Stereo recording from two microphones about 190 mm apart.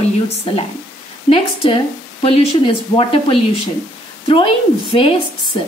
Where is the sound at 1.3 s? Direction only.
30° left (ahead or behind).